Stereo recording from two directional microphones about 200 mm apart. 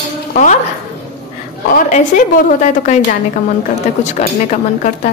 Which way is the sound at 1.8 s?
40° left (ahead or behind).